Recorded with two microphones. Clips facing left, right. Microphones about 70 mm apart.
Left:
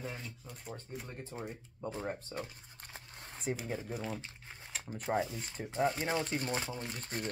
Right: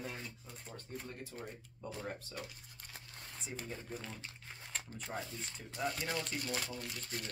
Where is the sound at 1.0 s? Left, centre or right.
Left.